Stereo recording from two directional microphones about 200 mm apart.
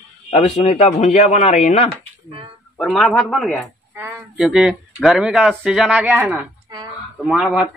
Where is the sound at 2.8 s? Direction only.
5° left (ahead or behind).